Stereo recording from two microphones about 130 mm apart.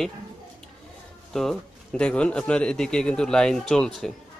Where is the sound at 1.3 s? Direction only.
5° left (ahead or behind).